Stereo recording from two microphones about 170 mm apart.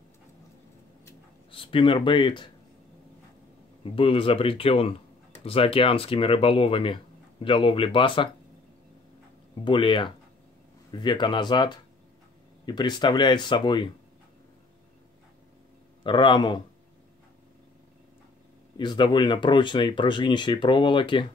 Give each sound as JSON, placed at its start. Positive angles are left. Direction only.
{"t": 1.5, "sound": "speech", "side_deg": 30}
{"t": 3.8, "sound": "speech", "side_deg": 35}
{"t": 9.7, "sound": "speech", "side_deg": 30}
{"t": 16.0, "sound": "speech", "side_deg": 30}
{"t": 18.8, "sound": "speech", "side_deg": 25}